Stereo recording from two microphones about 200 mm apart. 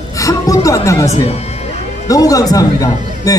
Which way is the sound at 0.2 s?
15° left (ahead or behind).